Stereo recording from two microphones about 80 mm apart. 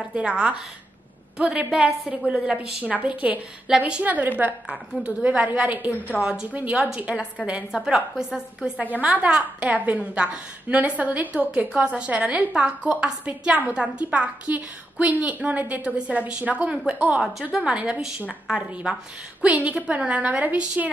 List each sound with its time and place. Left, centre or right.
0.1 s a woman's voice: centre